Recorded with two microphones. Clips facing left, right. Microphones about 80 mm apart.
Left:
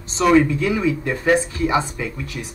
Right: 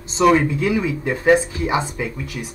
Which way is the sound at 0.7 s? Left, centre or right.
Right.